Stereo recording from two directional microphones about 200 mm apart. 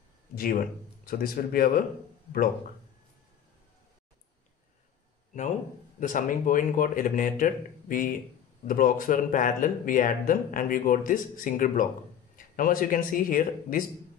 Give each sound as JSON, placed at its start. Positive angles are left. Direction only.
{"t": 0.4, "sound": "speech", "side_deg": 45}
{"t": 5.9, "sound": "speech", "side_deg": 40}